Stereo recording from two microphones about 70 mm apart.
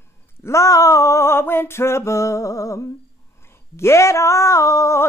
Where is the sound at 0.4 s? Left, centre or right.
Left.